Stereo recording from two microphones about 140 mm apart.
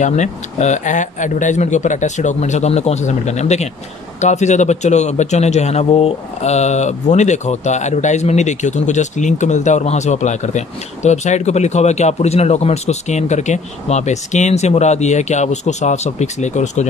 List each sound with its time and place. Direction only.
0.0 s a man's voice: 60° left (ahead or behind)